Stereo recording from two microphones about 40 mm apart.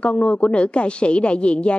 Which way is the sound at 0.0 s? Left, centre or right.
Left.